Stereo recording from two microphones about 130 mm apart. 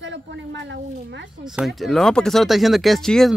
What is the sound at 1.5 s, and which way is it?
Speech, centre (ahead or behind).